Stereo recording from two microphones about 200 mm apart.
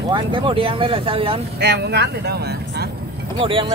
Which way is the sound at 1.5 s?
55° right (ahead or behind).